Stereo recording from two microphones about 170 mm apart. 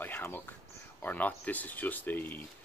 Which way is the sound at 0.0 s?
10° left (ahead or behind).